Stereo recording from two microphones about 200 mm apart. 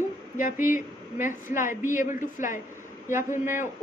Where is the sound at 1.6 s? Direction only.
40° left (ahead or behind).